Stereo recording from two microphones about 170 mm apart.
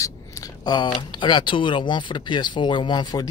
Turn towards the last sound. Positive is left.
turn(degrees=25)  # may be behind; listen again after turning